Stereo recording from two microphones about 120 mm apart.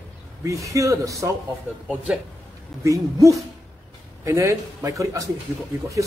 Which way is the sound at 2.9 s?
25° right (ahead or behind).